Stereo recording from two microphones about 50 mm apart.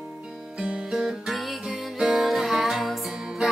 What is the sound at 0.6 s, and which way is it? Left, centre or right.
Music, right.